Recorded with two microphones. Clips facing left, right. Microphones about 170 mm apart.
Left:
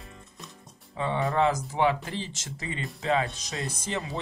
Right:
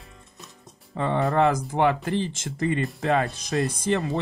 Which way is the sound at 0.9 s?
60° right (ahead or behind).